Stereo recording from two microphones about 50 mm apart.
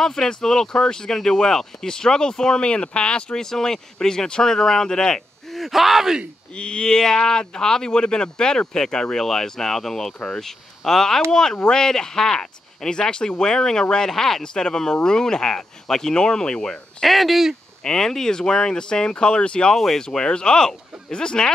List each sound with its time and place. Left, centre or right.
0.0 s speech: centre
5.5 s speech: centre
6.5 s speech: left
17.0 s speech: centre
17.8 s speech: centre
19.7 s speech: centre